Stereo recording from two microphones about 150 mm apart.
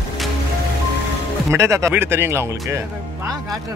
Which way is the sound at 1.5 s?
20° right (ahead or behind).